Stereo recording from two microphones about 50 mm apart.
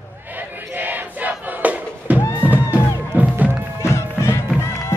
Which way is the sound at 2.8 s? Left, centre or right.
Right.